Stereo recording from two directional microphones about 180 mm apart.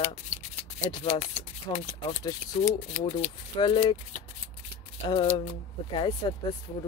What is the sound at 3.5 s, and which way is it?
Speech, 25° left (ahead or behind).